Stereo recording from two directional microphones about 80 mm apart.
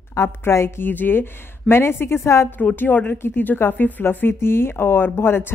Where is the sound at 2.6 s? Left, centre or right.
Left.